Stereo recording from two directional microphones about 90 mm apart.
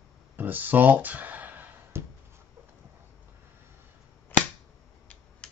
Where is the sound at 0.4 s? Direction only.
20° right (ahead or behind).